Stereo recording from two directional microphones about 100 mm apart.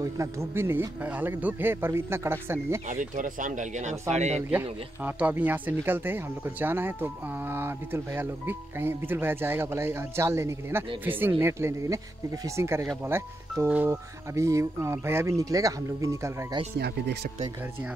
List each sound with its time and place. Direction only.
0.0 s speech: 30° right (ahead or behind)
4.5 s speech: 15° right (ahead or behind)